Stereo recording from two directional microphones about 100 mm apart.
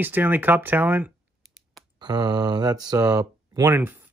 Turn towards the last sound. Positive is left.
turn(degrees=-20)  # may be behind; listen again after turning